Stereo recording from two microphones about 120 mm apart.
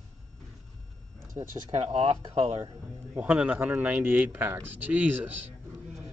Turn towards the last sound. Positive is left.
turn(degrees=-15)  # may be behind; listen again after turning